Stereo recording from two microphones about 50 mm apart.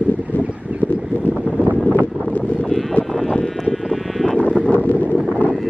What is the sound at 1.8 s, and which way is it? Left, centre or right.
Wind noise, left.